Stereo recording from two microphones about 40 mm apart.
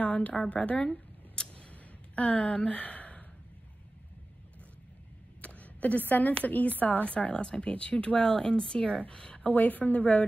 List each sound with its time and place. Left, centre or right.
0.0 s a woman's voice: left
0.5 s scissors: left
5.4 s a woman's voice: left
7.2 s speech: left
8.2 s a woman's voice: left
9.4 s a woman's voice: left